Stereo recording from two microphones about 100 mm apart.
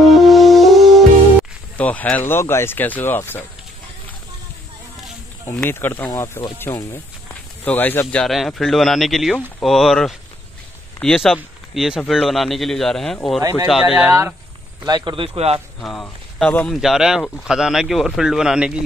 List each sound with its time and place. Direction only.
0.1 s music: centre (ahead or behind)
1.8 s speech: 15° left (ahead or behind)
5.5 s speech: 20° left (ahead or behind)
8.2 s speech: centre (ahead or behind)
13.4 s speech: 35° right (ahead or behind)
13.7 s speech: 5° right (ahead or behind)
14.9 s speech: 45° right (ahead or behind)
15.1 s a man's voice: 80° right
15.8 s speech: 5° left (ahead or behind)